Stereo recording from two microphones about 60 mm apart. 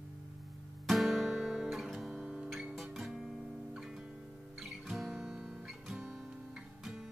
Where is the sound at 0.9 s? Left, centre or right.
Centre.